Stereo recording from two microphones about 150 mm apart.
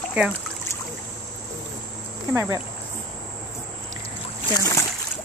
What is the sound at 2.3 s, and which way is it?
Speech, 20° right (ahead or behind).